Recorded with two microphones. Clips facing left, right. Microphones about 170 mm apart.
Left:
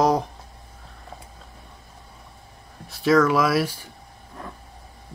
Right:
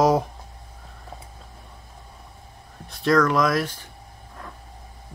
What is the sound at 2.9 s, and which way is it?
Speech, 5° left (ahead or behind).